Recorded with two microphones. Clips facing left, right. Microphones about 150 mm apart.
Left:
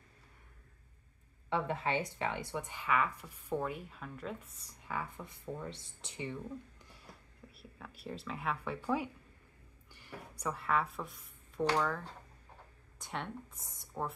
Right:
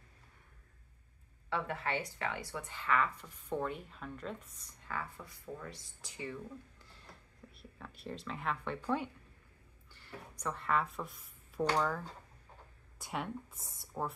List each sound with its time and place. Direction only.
1.5 s speech: 20° left (ahead or behind); by 4.4 s 5° left (ahead or behind)
4.5 s speech: 35° left (ahead or behind)
4.8 s speech: 15° left (ahead or behind)
7.5 s speech: 5° left (ahead or behind)
10.4 s speech: 5° left (ahead or behind)
13.0 s speech: 5° right (ahead or behind)